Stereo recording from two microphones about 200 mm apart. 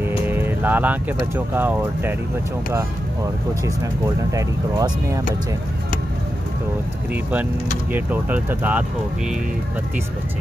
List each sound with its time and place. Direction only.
0.3 s speech: 10° right (ahead or behind)
4.2 s speech: 15° right (ahead or behind)
7.9 s speech: 10° right (ahead or behind)